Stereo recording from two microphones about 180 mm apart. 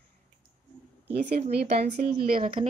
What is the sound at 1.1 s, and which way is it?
Speech, 45° right (ahead or behind).